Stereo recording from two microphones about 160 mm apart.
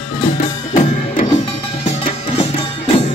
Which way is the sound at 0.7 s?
55° left (ahead or behind).